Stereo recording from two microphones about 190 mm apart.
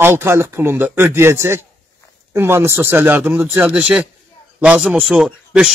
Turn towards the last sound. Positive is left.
turn(degrees=-5)  # may be behind; listen again after turning